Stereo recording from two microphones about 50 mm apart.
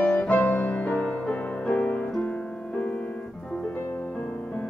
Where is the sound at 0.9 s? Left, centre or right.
Centre.